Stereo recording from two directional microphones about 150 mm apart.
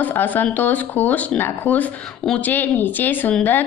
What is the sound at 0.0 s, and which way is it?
Speech, 10° left (ahead or behind).